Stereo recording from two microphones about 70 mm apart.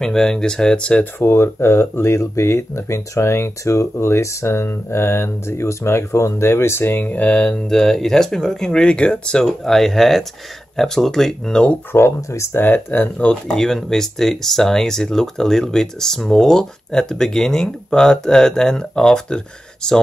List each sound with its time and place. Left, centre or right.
0.0 s speech: centre
1.2 s speech: left; by 7.5 s centre
7.5 s speech: centre
11.9 s speech: left
12.6 s speech: left
13.3 s speech: centre